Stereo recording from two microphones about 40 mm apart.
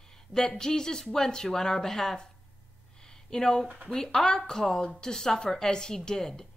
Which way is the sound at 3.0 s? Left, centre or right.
Centre.